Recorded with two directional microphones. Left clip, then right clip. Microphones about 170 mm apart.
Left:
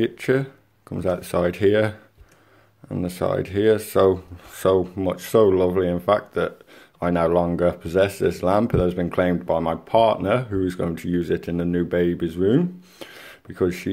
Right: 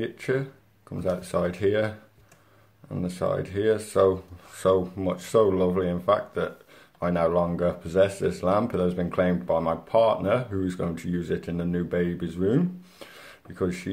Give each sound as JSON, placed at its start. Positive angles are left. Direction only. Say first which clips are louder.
{"t": 0.0, "sound": "speech", "louder": "left 6 dB", "side_deg": 40}